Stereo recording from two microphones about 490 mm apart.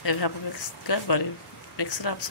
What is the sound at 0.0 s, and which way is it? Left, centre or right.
A woman's voice, left.